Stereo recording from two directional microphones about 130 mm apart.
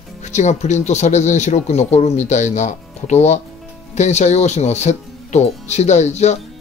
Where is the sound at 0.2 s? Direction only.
65° left (ahead or behind).